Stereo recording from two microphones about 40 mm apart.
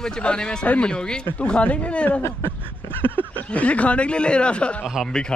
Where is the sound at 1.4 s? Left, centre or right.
Left.